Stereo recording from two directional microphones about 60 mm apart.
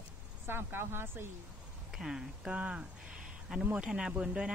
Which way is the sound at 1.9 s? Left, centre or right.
Centre.